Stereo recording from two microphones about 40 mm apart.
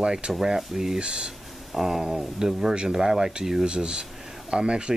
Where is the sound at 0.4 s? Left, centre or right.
Centre.